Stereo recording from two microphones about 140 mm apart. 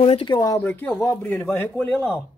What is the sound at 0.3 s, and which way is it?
A man's voice, 25° left (ahead or behind).